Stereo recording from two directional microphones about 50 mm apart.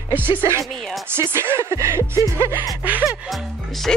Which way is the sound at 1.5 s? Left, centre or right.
Right.